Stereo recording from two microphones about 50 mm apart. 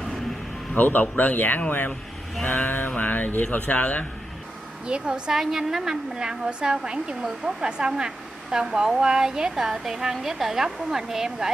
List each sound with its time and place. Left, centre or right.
0.7 s a sound: left
1.6 s speech: left
2.4 s a sound: left
3.4 s speech: left
4.8 s a woman's voice: centre
5.3 s speech: centre